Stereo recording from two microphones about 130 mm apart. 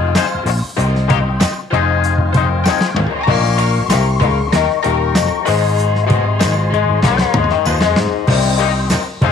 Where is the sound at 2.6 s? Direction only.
Centre (ahead or behind).